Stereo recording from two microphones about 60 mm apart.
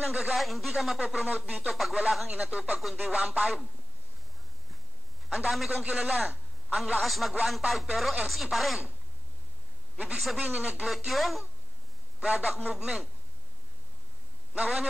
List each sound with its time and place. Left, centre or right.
0.0 s a man's voice: centre
1.0 s speech: centre
1.7 s a man's voice: centre
2.8 s a man's voice: centre
3.1 s speech: centre
5.5 s a man's voice: centre
10.1 s a man's voice: centre
12.6 s speech: centre
14.5 s a man's voice: centre